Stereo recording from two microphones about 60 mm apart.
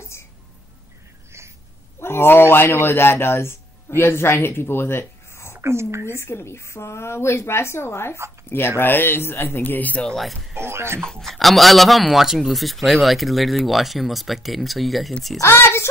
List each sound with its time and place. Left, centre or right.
2.0 s a sound: left
2.5 s speech: left
5.6 s speech: right
6.0 s speech: left
10.1 s speech: centre
10.5 s speech: right
11.0 s speech: centre
15.4 s speech: left